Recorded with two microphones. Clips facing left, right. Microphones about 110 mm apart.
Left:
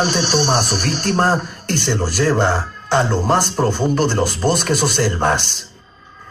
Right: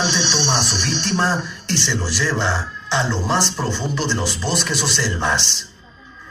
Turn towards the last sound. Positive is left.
turn(degrees=50)  # may be behind; listen again after turning